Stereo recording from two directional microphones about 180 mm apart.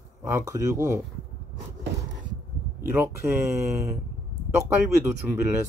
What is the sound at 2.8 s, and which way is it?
Speech, 15° right (ahead or behind).